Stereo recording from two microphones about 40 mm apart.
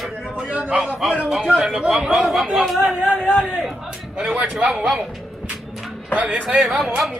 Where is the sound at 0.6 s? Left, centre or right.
Right.